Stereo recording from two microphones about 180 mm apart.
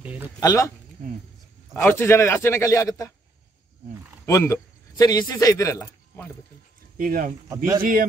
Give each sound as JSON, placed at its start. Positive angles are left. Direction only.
{"t": 0.4, "sound": "a man's voice", "side_deg": 20}
{"t": 4.3, "sound": "speech", "side_deg": 15}
{"t": 7.0, "sound": "speech", "side_deg": -50}
{"t": 7.4, "sound": "a man's voice", "side_deg": -15}